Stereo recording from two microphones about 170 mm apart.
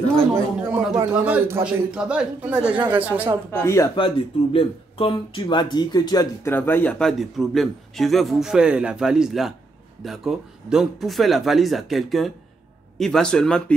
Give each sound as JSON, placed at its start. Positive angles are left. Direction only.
{"t": 0.9, "sound": "a man's voice", "side_deg": -10}
{"t": 3.6, "sound": "speech", "side_deg": 20}
{"t": 4.0, "sound": "speech", "side_deg": 35}
{"t": 6.5, "sound": "a man's voice", "side_deg": 10}